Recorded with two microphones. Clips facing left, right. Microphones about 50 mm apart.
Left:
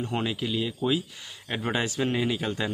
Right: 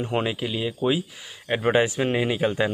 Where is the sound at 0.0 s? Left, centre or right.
Right.